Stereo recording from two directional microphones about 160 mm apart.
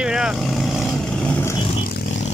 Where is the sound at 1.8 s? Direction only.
65° left (ahead or behind).